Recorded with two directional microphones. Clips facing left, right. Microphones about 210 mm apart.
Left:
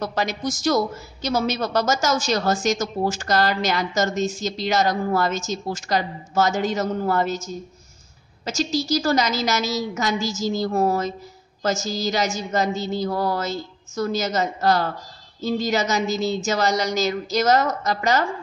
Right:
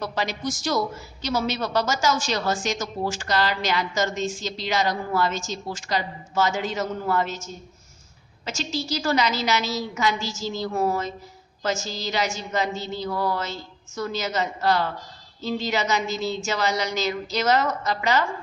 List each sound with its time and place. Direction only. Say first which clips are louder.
0.0 s a man's voice: left 3 dB; 45° left (ahead or behind)